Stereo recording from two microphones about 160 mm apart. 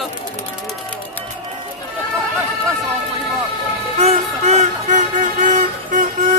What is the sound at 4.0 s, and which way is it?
Music, 45° right (ahead or behind).